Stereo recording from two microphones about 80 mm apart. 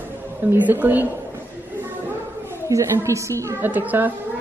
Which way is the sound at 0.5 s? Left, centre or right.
Right.